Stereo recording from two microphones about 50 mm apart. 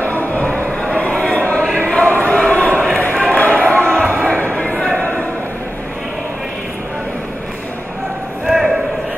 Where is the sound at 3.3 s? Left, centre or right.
Left.